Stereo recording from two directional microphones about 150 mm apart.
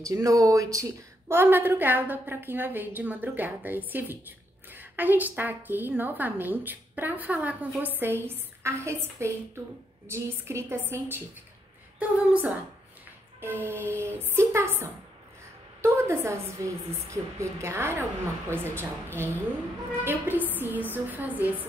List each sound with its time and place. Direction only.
0.0 s a woman's voice: 20° right (ahead or behind)